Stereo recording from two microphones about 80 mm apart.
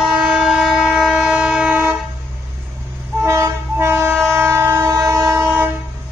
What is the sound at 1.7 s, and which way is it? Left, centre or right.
Vehicle, centre.